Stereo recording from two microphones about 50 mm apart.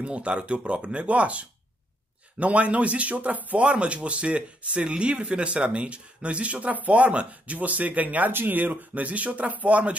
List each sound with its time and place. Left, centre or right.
0.0 s speech: right
8.3 s speech: right